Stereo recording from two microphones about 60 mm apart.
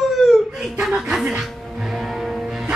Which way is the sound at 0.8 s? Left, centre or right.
Centre.